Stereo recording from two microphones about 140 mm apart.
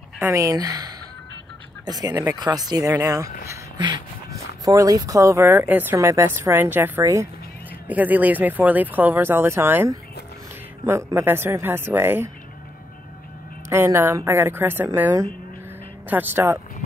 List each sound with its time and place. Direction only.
0.2 s speech: 25° right (ahead or behind)
13.7 s speech: 20° right (ahead or behind)